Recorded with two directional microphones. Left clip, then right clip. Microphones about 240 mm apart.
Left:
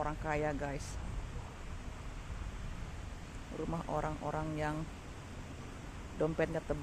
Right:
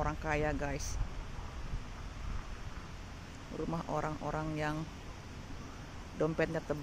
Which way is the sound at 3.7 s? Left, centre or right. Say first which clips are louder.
Right 1 dB; centre.